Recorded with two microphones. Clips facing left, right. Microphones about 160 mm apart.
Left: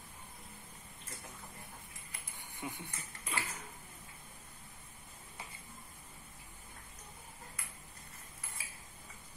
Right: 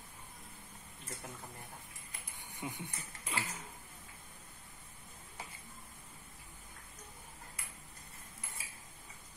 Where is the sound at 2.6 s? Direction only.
20° right (ahead or behind).